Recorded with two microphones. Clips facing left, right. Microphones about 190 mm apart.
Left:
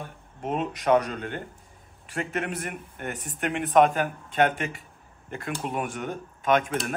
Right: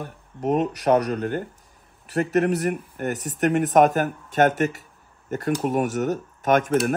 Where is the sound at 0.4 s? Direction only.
40° right (ahead or behind).